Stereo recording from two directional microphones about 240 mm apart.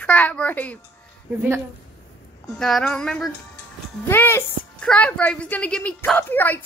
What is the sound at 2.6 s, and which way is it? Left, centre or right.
A woman's voice, centre.